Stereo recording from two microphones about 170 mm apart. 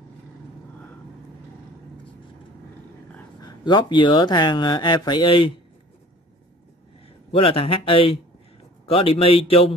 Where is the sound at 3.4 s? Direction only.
25° left (ahead or behind).